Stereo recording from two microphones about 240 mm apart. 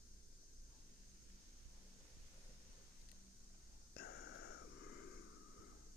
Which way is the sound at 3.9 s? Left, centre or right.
Left.